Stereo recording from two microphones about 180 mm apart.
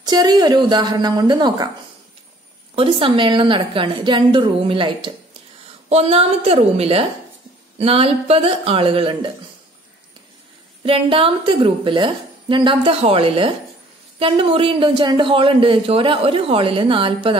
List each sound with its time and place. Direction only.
0.0 s speech: 25° right (ahead or behind)
2.7 s speech: 30° right (ahead or behind)
10.8 s speech: 30° right (ahead or behind)